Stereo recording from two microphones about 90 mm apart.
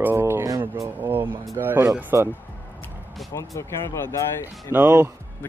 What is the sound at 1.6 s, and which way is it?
Speech, 25° right (ahead or behind).